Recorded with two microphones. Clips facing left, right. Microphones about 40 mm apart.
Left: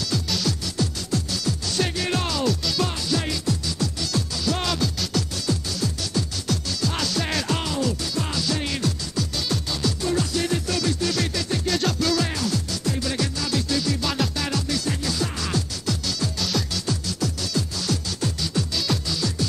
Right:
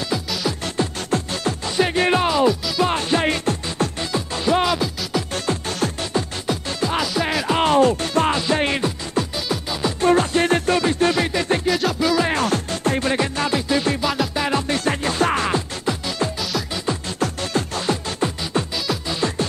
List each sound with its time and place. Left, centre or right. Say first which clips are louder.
0.5 s music: right 3 dB; right
2.9 s music: right 7 dB; right
4.1 s music: right 8 dB; right
5.3 s music: right 4 dB; right
6.4 s music: right 3 dB; right
7.5 s music: right 10 dB; right
9.5 s music: right 3 dB; right
10.0 s music: right 10 dB; right
11.6 s music: right 4 dB; centre
12.3 s music: right 6 dB; right
14.0 s music: right 4 dB; centre
14.3 s music: right 6 dB; right
14.7 s music: right 5 dB; right
17.2 s music: right 4 dB; right